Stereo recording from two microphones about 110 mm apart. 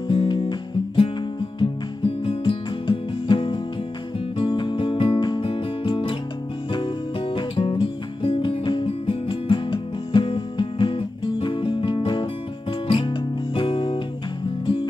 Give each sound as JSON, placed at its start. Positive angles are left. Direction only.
{"t": 0.1, "sound": "music", "side_deg": 50}